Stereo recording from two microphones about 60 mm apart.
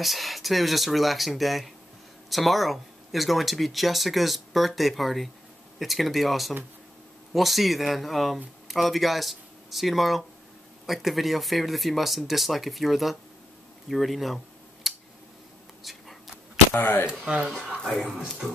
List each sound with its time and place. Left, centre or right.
0.0 s speech: centre
13.8 s a sound: centre
15.8 s whispering: centre
16.7 s speech: left
17.1 s speech: centre
17.8 s speech: centre